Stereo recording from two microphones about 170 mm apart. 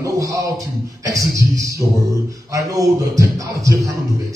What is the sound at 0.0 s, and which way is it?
A man's voice, 20° right (ahead or behind).